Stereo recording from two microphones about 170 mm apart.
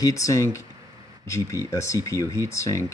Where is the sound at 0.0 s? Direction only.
20° left (ahead or behind).